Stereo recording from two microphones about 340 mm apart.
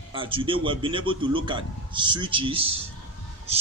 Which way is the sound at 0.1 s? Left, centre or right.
Centre.